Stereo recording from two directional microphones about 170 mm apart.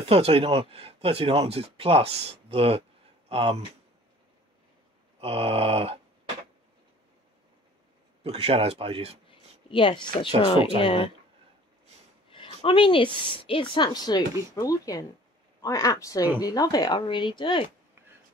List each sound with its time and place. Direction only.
0.1 s speech: 35° right (ahead or behind)
5.2 s speech: 35° right (ahead or behind)
8.2 s speech: 35° right (ahead or behind)
9.7 s speech: 30° left (ahead or behind)
12.3 s a sound: 30° left (ahead or behind)
13.4 s speech: 30° left (ahead or behind)